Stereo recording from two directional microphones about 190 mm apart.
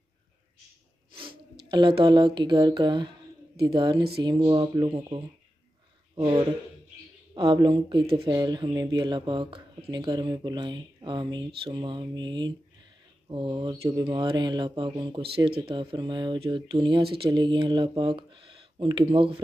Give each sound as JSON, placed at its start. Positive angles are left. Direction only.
{"t": 1.7, "sound": "speech", "side_deg": -25}